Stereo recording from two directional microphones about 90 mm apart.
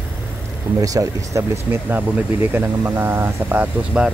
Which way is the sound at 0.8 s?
40° right (ahead or behind).